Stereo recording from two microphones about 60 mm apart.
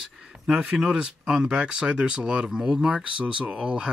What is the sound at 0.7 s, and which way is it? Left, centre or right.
Speech, centre.